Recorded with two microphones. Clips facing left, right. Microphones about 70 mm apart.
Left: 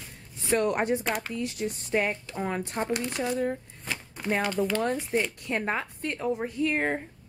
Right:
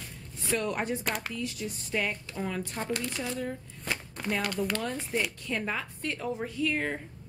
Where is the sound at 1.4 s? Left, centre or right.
Left.